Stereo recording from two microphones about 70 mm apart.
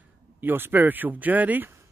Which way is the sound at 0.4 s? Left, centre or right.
Right.